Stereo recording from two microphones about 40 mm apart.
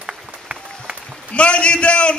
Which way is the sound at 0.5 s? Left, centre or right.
Centre.